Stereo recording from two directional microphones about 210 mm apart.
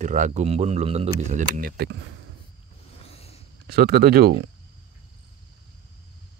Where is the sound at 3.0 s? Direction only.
30° left (ahead or behind).